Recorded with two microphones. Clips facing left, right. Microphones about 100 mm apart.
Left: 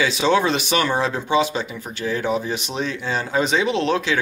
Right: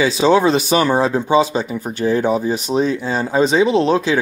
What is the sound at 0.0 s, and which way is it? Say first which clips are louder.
Speech: right 5 dB; 35° right (ahead or behind).